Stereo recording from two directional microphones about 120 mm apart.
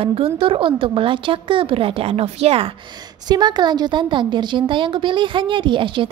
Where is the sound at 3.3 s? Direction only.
35° right (ahead or behind).